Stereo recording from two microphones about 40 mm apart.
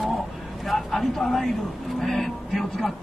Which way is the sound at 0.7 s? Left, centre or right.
Centre.